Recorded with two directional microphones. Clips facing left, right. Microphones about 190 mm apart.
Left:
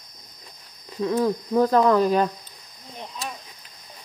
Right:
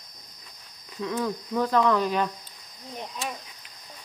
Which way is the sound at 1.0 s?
35° left (ahead or behind).